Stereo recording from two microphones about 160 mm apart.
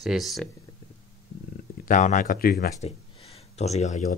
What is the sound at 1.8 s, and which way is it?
Speech, 50° left (ahead or behind).